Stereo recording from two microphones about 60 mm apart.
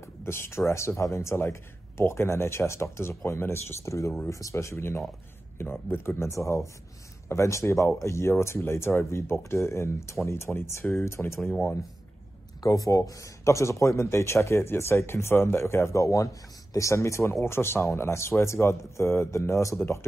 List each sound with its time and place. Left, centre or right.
0.0 s speech: left
12.6 s speech: left
16.0 s a man's voice: left
16.7 s speech: left